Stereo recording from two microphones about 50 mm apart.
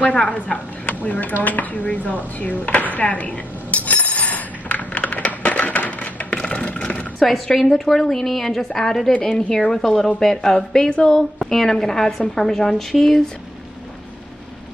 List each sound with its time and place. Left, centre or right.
0.0 s speech: left
1.4 s dishes: left
7.2 s a woman's voice: centre